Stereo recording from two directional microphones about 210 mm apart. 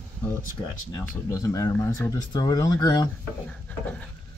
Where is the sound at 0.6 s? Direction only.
25° left (ahead or behind).